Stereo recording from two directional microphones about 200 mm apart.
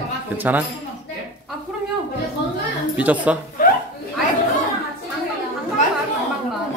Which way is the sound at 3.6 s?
45° left (ahead or behind).